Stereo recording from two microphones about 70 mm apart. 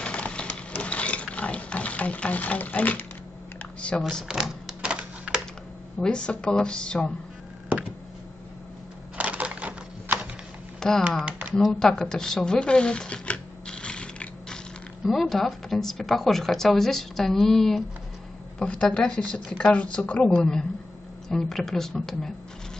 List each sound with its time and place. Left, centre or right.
0.0 s a sound: centre
3.8 s speech: centre
4.3 s typewriter: centre
5.9 s speech: centre
9.1 s typewriter: centre
10.8 s speech: centre
11.8 s shuffling cards: centre
15.0 s speech: centre